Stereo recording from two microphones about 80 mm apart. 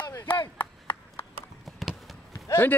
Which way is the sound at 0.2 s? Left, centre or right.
Left.